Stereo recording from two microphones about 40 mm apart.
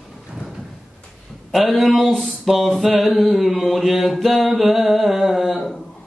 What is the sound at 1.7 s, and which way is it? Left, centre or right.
Mantra, centre.